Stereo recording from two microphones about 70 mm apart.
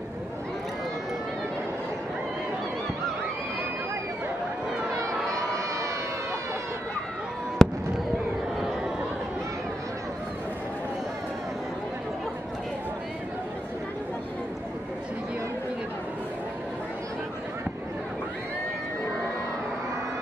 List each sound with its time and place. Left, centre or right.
4.9 s a sound: right
7.6 s fireworks: centre
8.5 s chatter: centre